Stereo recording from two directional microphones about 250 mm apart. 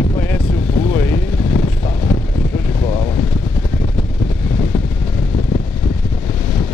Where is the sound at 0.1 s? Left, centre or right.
Centre.